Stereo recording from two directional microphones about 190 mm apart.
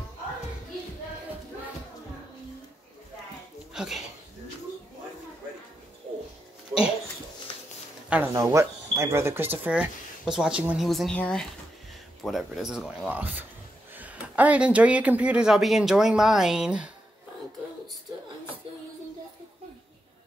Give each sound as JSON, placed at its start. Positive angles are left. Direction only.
{"t": 3.7, "sound": "speech", "side_deg": -5}
{"t": 8.1, "sound": "speech", "side_deg": -10}